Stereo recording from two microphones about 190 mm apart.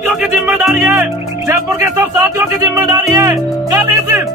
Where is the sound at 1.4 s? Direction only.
15° right (ahead or behind).